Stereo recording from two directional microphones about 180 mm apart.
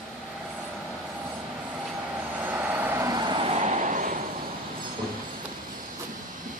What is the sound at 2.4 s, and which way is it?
Vehicle, 10° right (ahead or behind).